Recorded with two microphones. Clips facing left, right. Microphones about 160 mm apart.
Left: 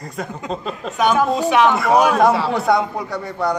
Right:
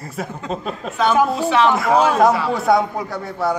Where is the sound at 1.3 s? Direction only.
15° left (ahead or behind).